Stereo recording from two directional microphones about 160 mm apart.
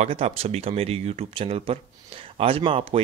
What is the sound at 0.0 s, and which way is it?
A man's voice, 40° right (ahead or behind).